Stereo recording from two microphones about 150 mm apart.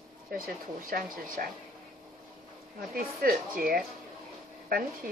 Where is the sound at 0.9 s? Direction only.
85° right.